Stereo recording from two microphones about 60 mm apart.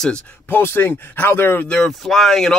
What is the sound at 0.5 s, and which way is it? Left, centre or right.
Speech, left.